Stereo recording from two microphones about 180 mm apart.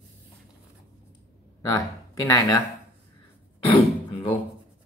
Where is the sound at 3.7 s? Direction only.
30° left (ahead or behind).